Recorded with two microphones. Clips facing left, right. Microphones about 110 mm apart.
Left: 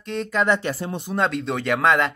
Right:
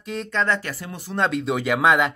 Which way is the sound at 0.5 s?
25° left (ahead or behind).